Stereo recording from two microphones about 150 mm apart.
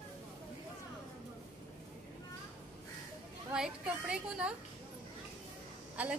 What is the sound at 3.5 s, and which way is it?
A woman's voice, 5° right (ahead or behind).